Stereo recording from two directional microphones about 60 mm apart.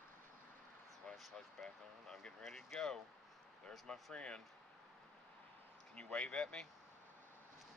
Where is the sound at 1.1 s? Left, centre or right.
Centre.